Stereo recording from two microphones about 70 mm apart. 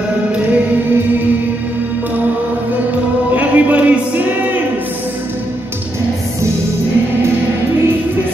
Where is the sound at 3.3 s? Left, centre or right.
Right.